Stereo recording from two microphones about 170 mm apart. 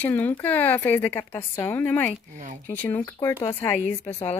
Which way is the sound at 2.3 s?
45° right (ahead or behind).